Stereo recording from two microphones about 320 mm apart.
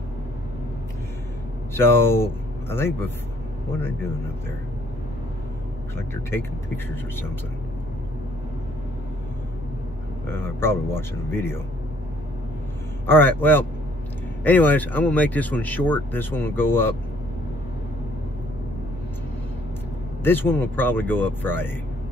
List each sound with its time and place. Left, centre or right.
1.7 s speech: centre
10.2 s speech: centre
13.0 s speech: centre
20.2 s speech: centre